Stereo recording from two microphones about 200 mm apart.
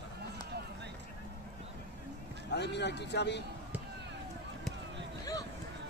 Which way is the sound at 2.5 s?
60° left (ahead or behind).